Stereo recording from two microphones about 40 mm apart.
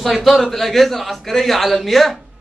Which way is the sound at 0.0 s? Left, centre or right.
Centre.